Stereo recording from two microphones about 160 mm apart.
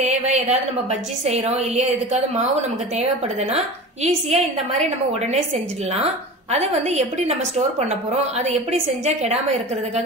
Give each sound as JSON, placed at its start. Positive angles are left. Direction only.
{"t": 0.0, "sound": "a sound", "side_deg": -45}
{"t": 1.2, "sound": "a woman's voice", "side_deg": -45}
{"t": 3.5, "sound": "a woman's voice", "side_deg": -45}
{"t": 6.5, "sound": "a woman's voice", "side_deg": -45}
{"t": 9.0, "sound": "a woman's voice", "side_deg": -45}